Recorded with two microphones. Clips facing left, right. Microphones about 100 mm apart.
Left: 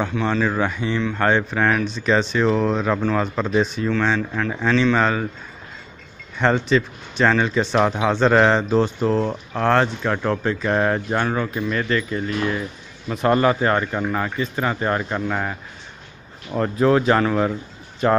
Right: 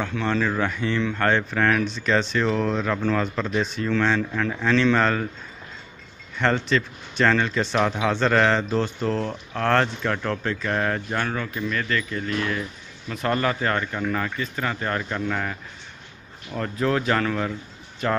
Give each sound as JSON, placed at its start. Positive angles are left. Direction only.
{"t": 0.1, "sound": "speech", "side_deg": 10}
{"t": 3.8, "sound": "speech", "side_deg": 10}
{"t": 6.3, "sound": "speech", "side_deg": 15}
{"t": 16.5, "sound": "speech", "side_deg": 30}